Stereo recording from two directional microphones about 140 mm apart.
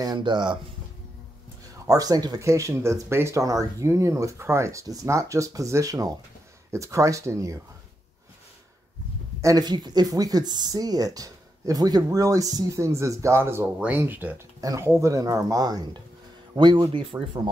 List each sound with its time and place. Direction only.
0.0 s speech: 30° right (ahead or behind)
1.9 s speech: 25° right (ahead or behind)
9.4 s speech: 25° right (ahead or behind)